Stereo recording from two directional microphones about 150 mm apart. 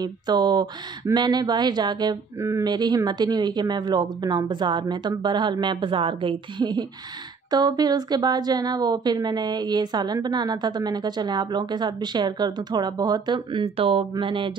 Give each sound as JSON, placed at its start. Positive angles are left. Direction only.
{"t": 0.0, "sound": "a woman's voice", "side_deg": -30}